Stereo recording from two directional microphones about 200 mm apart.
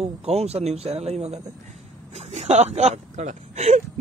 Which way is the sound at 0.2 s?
30° right (ahead or behind).